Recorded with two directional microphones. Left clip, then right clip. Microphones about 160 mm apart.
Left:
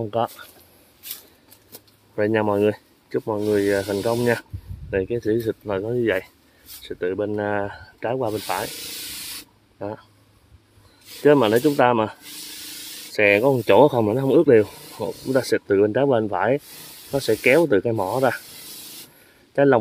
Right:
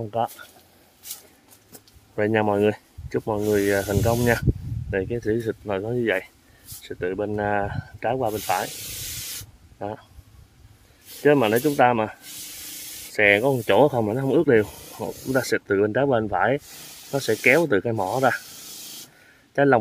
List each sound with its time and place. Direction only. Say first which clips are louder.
0.0 s speech: left 2 dB; 20° left (ahead or behind)
2.1 s speech: left 1 dB; 5° right (ahead or behind)
9.8 s speech: left 1 dB; 5° right (ahead or behind)
11.2 s speech: left 3 dB; 5° left (ahead or behind)
13.1 s rub: left 1 dB; 10° left (ahead or behind)
13.7 s a man's voice: left 3 dB; 15° left (ahead or behind)